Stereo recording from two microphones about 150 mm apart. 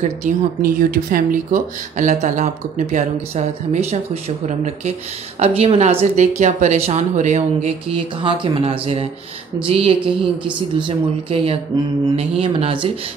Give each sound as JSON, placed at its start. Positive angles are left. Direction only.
{"t": 0.2, "sound": "speech", "side_deg": -70}